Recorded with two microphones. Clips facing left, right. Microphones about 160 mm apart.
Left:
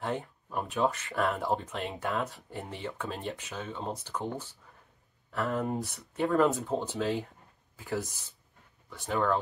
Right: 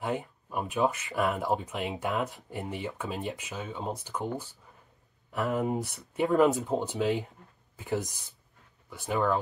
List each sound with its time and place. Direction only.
0.0 s a sound: 10° right (ahead or behind)
1.1 s speech: 5° right (ahead or behind)
1.5 s speech: 15° right (ahead or behind)